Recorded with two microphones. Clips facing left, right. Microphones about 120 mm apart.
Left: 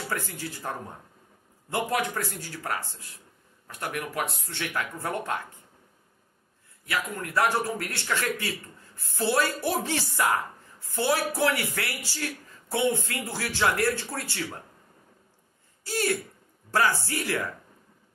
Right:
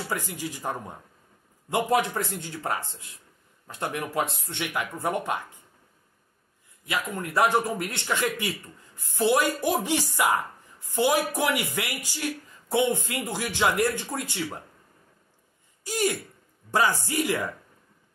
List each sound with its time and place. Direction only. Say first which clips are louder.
0.3 s a man's voice: right 3 dB; 15° right (ahead or behind)
6.9 s a man's voice: right 1 dB; 20° right (ahead or behind)
15.8 s a man's voice: right 1 dB; 15° right (ahead or behind)